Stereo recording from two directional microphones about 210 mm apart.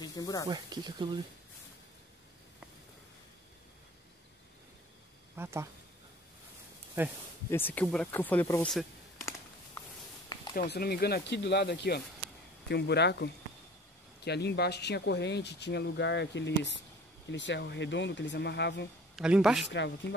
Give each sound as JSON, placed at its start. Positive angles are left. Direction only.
{"t": 0.0, "sound": "speech", "side_deg": 15}
{"t": 0.5, "sound": "speech", "side_deg": -20}
{"t": 5.3, "sound": "speech", "side_deg": -10}
{"t": 7.5, "sound": "speech", "side_deg": 10}
{"t": 10.5, "sound": "speech", "side_deg": 45}
{"t": 19.1, "sound": "speech", "side_deg": -5}
{"t": 19.7, "sound": "speech", "side_deg": 55}